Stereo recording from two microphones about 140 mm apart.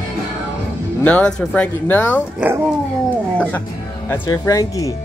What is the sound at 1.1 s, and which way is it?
Speech, 10° left (ahead or behind).